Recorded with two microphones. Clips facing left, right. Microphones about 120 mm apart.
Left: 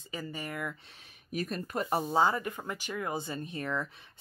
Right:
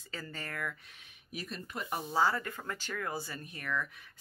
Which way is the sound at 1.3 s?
50° left (ahead or behind).